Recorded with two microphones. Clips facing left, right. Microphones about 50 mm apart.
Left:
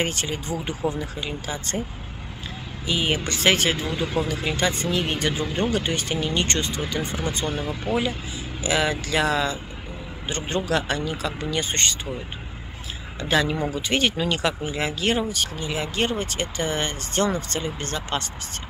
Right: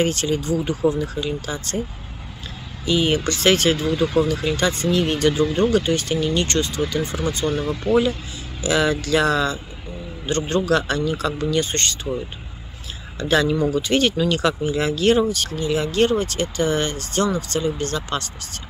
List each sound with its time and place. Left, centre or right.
0.0 s speech: centre
2.8 s speech: centre
7.4 s speech: centre
13.2 s speech: centre